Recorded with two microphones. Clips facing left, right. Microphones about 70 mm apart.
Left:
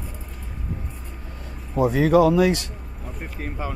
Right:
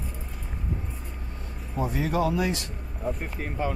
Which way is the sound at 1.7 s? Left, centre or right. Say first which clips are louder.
Left 10 dB; left.